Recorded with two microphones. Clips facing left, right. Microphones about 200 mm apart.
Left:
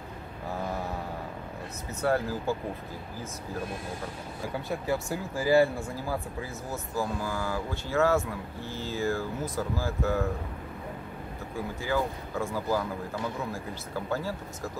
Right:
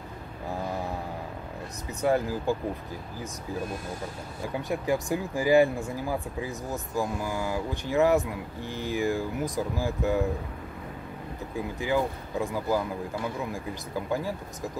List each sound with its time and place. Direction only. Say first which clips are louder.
2.0 s speech: right 2 dB; 15° right (ahead or behind)
4.6 s speech: right 3 dB; 15° right (ahead or behind)
11.5 s speech: right 2 dB; 15° right (ahead or behind)
14.1 s speech: right 2 dB; 15° right (ahead or behind)